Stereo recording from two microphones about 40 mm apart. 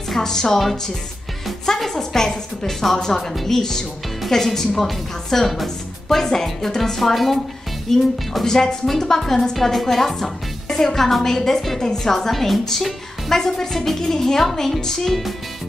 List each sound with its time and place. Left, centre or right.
0.1 s speech: centre
1.7 s speech: centre
8.5 s speech: centre
15.0 s speech: centre